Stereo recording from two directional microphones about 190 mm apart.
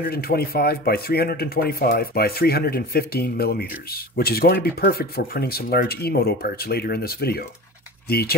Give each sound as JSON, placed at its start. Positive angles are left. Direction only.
{"t": 0.0, "sound": "speech", "side_deg": 55}